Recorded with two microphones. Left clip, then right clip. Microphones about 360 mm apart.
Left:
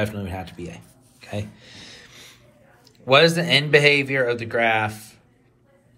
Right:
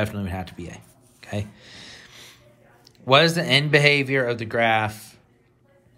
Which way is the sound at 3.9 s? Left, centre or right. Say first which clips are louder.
Left 1 dB; right.